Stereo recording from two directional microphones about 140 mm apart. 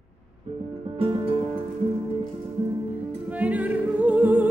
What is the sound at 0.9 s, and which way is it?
Music, 40° right (ahead or behind).